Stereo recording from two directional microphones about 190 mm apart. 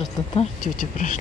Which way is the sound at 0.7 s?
40° left (ahead or behind).